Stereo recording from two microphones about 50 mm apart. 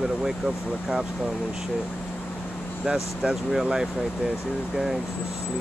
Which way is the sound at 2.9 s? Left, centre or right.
Centre.